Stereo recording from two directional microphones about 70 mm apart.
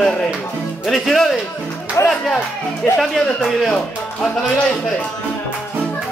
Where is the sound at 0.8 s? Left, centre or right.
Centre.